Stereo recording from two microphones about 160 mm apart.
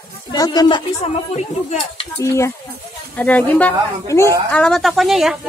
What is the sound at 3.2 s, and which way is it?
A woman's voice, 10° left (ahead or behind).